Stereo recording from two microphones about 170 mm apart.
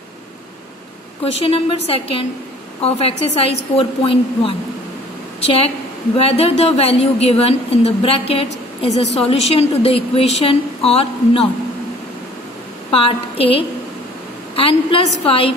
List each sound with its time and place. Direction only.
1.2 s a woman's voice: 35° left (ahead or behind)
12.9 s a woman's voice: 35° left (ahead or behind)